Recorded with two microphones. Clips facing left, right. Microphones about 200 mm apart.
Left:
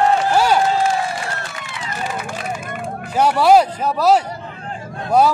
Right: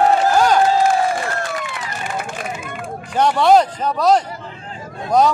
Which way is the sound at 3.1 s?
10° left (ahead or behind).